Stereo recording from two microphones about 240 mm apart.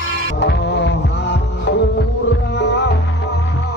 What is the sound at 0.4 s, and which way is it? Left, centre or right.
Music, left.